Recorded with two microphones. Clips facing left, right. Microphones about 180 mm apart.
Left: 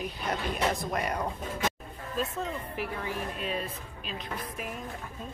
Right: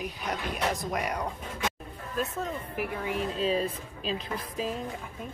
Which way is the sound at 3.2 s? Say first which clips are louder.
Right 9 dB; 25° right (ahead or behind).